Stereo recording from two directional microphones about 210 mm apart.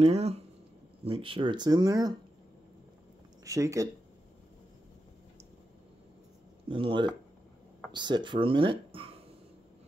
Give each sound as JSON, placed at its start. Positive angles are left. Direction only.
{"t": 0.0, "sound": "speech", "side_deg": -30}
{"t": 3.4, "sound": "speech", "side_deg": -15}
{"t": 6.7, "sound": "speech", "side_deg": -25}